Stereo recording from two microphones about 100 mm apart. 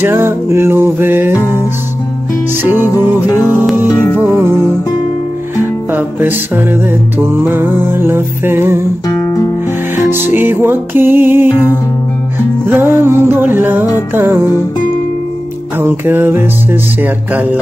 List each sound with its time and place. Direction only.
0.0 s music: 25° right (ahead or behind)
3.3 s music: 30° left (ahead or behind)
4.2 s music: 25° right (ahead or behind)
5.6 s music: 20° right (ahead or behind)
9.1 s music: 35° left (ahead or behind)
9.9 s music: 20° right (ahead or behind)
12.6 s music: 20° right (ahead or behind)
15.8 s music: 20° right (ahead or behind)